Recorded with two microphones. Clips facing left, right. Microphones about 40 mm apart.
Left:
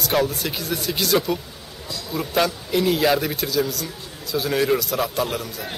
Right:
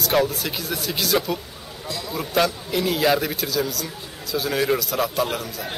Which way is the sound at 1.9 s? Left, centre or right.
Right.